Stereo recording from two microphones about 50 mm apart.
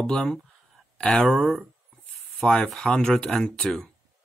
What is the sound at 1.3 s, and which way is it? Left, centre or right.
Speech, centre.